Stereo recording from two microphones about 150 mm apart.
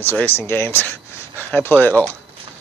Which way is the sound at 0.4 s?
15° left (ahead or behind).